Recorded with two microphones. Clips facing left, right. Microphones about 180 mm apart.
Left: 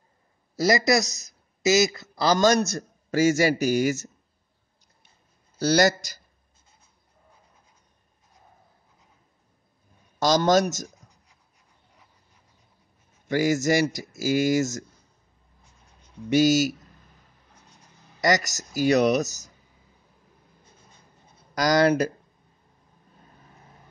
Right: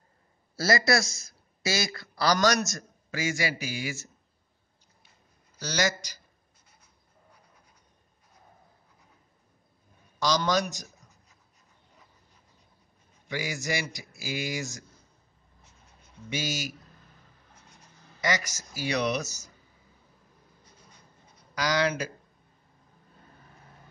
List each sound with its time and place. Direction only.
0.6 s a man's voice: 20° left (ahead or behind)
2.7 s speech: 40° left (ahead or behind)
5.8 s speech: 45° left (ahead or behind)
10.1 s speech: 45° left (ahead or behind)
10.9 s a sound: 15° left (ahead or behind)
13.3 s speech: 45° left (ahead or behind)
16.3 s speech: 40° left (ahead or behind)
18.2 s speech: 45° left (ahead or behind)
21.5 s speech: 45° left (ahead or behind)